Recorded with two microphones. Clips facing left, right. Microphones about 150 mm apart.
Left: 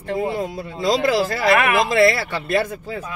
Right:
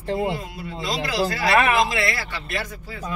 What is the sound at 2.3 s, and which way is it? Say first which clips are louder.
Speech: left 9 dB; 50° left (ahead or behind).